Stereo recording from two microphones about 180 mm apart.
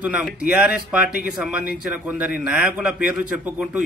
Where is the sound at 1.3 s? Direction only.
5° right (ahead or behind).